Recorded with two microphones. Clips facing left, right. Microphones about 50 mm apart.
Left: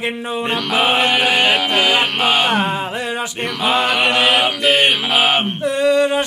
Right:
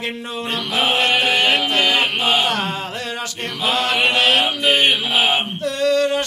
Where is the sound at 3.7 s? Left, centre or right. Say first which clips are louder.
Left 3 dB; centre.